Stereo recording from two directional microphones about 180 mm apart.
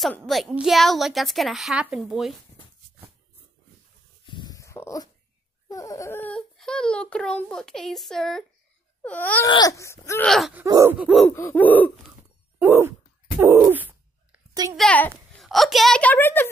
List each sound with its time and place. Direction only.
0.3 s speech: centre (ahead or behind)
4.3 s dog: 25° left (ahead or behind)
5.7 s speech: 20° left (ahead or behind)
9.5 s speech: 20° left (ahead or behind)
10.2 s speech: centre (ahead or behind)
10.5 s groan: 15° right (ahead or behind)
11.2 s speech: 10° left (ahead or behind)
12.5 s dog: 15° right (ahead or behind)
13.4 s a sound: 10° right (ahead or behind)
14.8 s a woman's voice: 10° left (ahead or behind)